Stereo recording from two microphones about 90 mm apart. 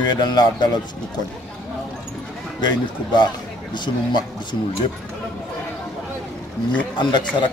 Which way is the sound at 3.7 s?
55° left (ahead or behind).